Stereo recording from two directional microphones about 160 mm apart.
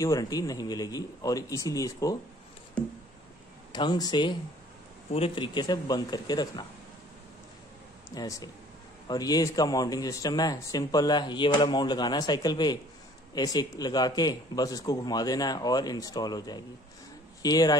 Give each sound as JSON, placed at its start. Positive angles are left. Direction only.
{"t": 0.0, "sound": "speech", "side_deg": 20}
{"t": 3.7, "sound": "speech", "side_deg": 25}
{"t": 8.1, "sound": "speech", "side_deg": 25}